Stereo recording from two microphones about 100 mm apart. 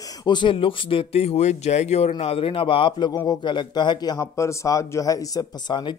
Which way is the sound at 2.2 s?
75° left (ahead or behind).